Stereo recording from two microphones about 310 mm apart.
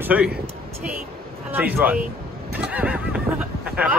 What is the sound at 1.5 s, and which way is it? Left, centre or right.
A man's voice, centre.